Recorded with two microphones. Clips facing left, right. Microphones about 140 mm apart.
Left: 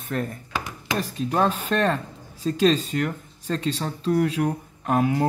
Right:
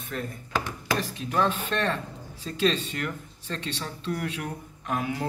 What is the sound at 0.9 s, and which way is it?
Speech, 40° left (ahead or behind).